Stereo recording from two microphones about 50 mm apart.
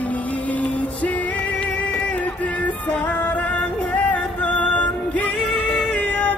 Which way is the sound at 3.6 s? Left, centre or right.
Left.